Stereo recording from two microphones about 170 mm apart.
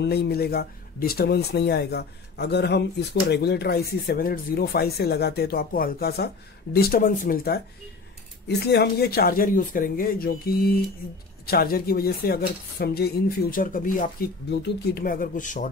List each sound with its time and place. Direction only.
0.0 s speech: 70° left (ahead or behind); by 3.2 s 85° left
3.3 s speech: 75° left (ahead or behind)
8.5 s speech: 75° left (ahead or behind); by 14.3 s 55° left (ahead or behind)
14.5 s speech: 75° left (ahead or behind); by 15.7 s 50° left (ahead or behind)